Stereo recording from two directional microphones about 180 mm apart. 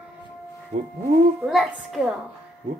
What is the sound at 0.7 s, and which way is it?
Speech, 40° right (ahead or behind).